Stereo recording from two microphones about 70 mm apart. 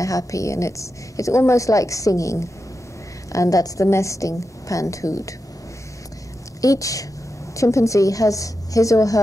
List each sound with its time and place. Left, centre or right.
0.0 s a woman's voice: left
6.6 s a woman's voice: left